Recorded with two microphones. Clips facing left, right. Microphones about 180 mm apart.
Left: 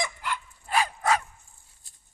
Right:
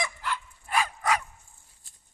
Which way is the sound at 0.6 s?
30° left (ahead or behind).